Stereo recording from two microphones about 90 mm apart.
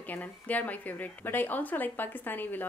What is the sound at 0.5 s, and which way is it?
A woman's voice, 15° left (ahead or behind).